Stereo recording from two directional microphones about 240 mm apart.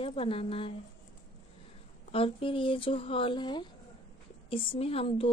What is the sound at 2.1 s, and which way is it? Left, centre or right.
Speech, left.